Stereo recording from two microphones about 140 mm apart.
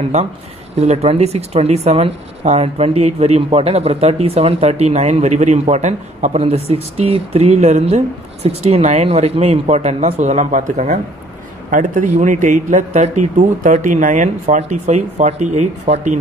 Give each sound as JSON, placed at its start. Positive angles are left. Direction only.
{"t": 0.7, "sound": "speech", "side_deg": -50}
{"t": 11.7, "sound": "a man's voice", "side_deg": -65}